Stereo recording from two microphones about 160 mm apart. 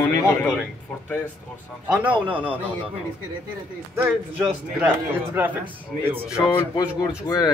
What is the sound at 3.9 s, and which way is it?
A man's voice, 15° right (ahead or behind).